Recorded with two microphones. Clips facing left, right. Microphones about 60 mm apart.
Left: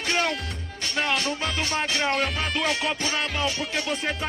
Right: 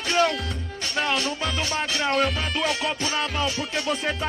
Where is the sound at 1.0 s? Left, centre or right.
Left.